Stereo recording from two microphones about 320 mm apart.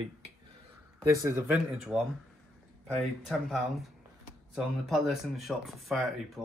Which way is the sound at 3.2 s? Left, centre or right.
Centre.